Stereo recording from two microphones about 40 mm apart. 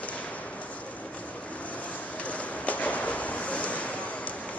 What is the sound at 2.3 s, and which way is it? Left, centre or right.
Waves, left.